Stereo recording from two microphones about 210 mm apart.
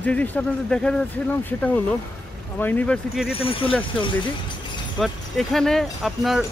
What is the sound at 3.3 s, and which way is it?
Speech, 25° left (ahead or behind).